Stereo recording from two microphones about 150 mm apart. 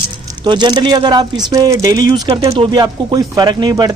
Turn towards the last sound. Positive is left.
turn(degrees=-25)  # may be behind; listen again after turning